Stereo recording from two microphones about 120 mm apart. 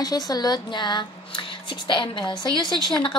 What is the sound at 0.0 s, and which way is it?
Speech, 35° left (ahead or behind).